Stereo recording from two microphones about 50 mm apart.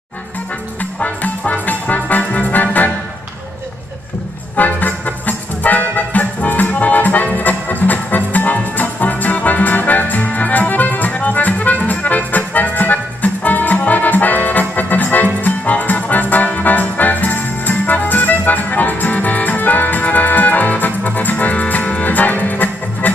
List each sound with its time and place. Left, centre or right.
0.9 s music: left
4.6 s music: left